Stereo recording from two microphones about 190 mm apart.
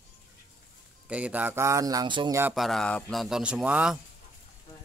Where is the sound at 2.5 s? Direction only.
Centre (ahead or behind).